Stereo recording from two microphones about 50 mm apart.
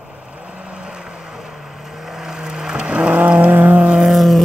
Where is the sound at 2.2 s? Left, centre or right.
Centre; by 3.9 s right.